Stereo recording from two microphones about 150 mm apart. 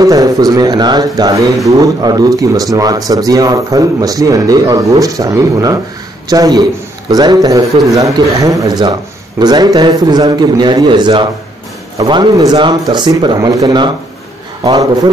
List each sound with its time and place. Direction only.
0.0 s speech: 25° right (ahead or behind)